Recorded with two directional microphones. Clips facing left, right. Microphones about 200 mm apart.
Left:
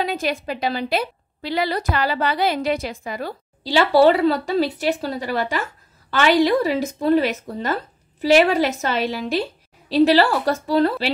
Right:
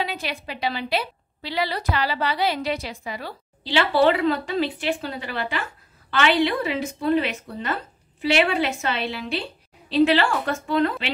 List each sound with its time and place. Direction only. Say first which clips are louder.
0.0 s a woman's voice: left 6 dB; 45° left (ahead or behind)